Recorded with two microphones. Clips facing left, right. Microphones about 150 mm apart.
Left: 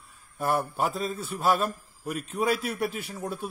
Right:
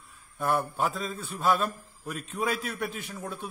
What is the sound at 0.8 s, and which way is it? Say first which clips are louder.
Speech: left 2 dB; 35° left (ahead or behind).